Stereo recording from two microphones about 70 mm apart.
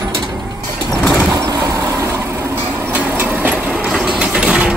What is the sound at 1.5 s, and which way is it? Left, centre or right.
Vehicle, right.